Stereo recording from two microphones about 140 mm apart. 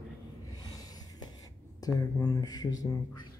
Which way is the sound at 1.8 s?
25° left (ahead or behind).